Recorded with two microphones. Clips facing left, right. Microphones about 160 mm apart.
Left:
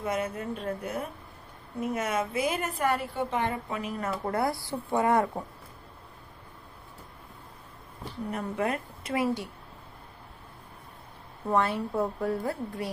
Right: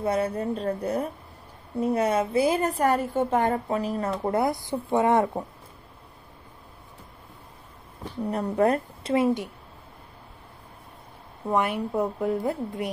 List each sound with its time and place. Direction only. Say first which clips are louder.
0.0 s a woman's voice: right 6 dB; 35° right (ahead or behind)
4.2 s a woman's voice: right 3 dB; 20° right (ahead or behind)
8.2 s a woman's voice: right 7 dB; 35° right (ahead or behind)
9.1 s a woman's voice: right 6 dB; 20° right (ahead or behind)
11.4 s a woman's voice: right 2 dB; 15° right (ahead or behind)